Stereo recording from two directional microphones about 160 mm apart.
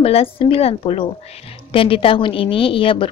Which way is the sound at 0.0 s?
35° left (ahead or behind).